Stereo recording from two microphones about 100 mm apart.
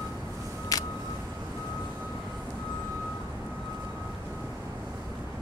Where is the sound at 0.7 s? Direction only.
35° left (ahead or behind).